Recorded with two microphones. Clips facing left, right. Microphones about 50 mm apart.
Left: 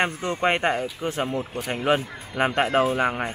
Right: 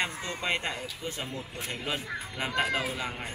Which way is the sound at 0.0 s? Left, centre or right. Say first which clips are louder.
Left 9 dB; left.